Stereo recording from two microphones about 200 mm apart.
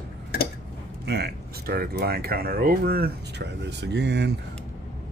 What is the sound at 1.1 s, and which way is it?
Speech, 55° right (ahead or behind).